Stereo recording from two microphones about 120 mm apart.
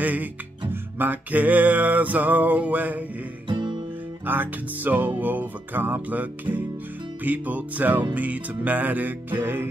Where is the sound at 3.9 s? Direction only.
15° right (ahead or behind).